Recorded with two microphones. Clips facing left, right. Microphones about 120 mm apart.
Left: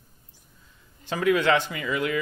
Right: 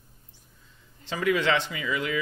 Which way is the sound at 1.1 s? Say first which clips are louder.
Left 3 dB; 50° left (ahead or behind).